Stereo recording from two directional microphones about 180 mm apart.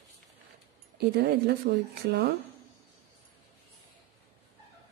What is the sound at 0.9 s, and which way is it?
Speech, 65° right (ahead or behind).